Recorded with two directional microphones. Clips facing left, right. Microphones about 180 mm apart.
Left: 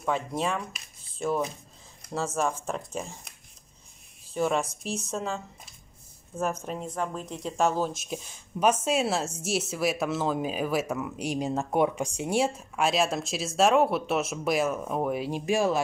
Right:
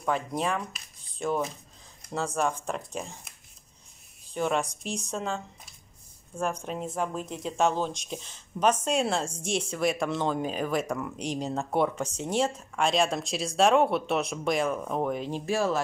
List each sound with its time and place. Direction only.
0.0 s speech: centre (ahead or behind)